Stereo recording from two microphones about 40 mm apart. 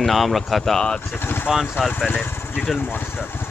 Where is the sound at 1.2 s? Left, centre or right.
Left.